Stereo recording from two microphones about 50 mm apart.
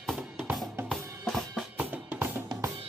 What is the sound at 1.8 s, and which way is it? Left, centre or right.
Drum kit, right.